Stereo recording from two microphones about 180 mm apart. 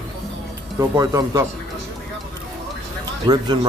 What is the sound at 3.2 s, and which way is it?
Speech, 25° right (ahead or behind).